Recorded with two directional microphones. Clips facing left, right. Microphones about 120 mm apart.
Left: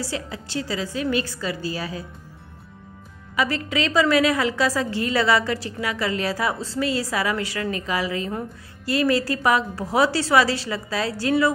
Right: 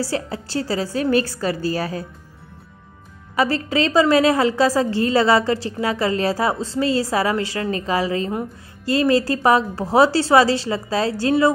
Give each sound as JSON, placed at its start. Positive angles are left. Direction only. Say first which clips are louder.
{"t": 0.0, "sound": "a woman's voice", "louder": "right 6 dB", "side_deg": -40}
{"t": 3.3, "sound": "a woman's voice", "louder": "right 4 dB", "side_deg": -35}
{"t": 8.3, "sound": "a woman's voice", "louder": "right 4 dB", "side_deg": -15}
{"t": 8.9, "sound": "a woman's voice", "louder": "right 4 dB", "side_deg": -25}